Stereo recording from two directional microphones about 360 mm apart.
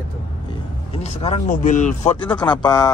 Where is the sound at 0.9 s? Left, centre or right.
Centre.